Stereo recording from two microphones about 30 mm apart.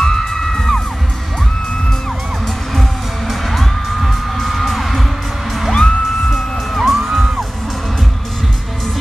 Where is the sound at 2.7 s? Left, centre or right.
Centre.